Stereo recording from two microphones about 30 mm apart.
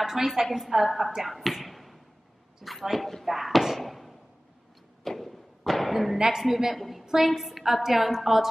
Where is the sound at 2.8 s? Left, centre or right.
Centre.